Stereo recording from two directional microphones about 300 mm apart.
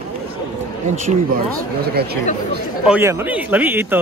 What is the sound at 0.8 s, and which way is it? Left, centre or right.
Speech, right.